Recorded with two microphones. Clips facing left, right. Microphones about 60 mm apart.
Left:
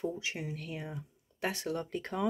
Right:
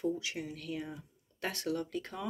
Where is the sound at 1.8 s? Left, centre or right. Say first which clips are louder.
Left 3 dB; left.